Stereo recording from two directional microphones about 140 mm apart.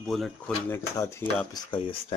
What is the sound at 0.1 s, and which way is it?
Speech, 5° left (ahead or behind).